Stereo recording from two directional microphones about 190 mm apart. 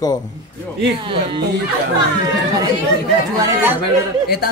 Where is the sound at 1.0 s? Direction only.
25° right (ahead or behind).